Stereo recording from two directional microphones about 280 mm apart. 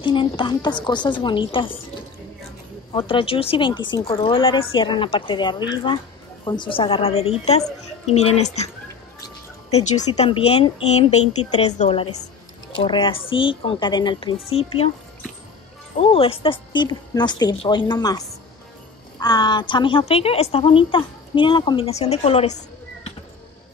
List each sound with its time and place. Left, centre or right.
0.0 s a woman's voice: centre
9.9 s a woman's voice: left
16.0 s a woman's voice: centre